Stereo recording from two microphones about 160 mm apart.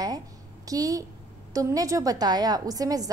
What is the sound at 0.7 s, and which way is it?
A woman's voice, 20° right (ahead or behind).